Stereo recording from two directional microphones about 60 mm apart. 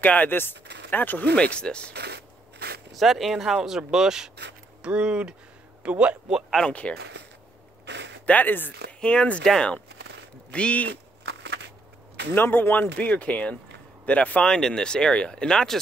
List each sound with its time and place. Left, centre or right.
0.0 s speech: left
1.3 s speech: centre
3.0 s speech: centre
6.7 s speech: left
8.3 s speech: left
9.0 s speech: centre
12.4 s speech: left
14.5 s speech: centre